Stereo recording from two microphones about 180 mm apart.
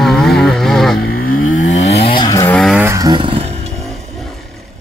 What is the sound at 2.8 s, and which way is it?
Motorcycle, 15° right (ahead or behind).